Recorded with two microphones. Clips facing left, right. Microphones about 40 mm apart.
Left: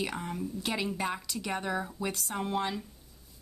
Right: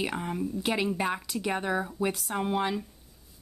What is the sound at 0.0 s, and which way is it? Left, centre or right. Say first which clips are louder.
Speech: right 3 dB; centre.